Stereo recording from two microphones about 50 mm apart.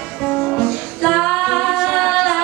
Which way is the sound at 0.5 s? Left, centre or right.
Centre.